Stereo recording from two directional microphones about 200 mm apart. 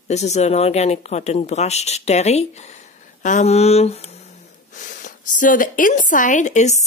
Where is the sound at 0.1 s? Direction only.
35° left (ahead or behind).